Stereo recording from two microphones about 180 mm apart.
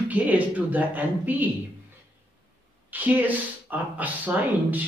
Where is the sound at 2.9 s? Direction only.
10° right (ahead or behind).